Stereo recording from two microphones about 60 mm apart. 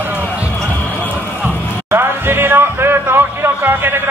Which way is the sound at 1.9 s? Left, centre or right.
Right.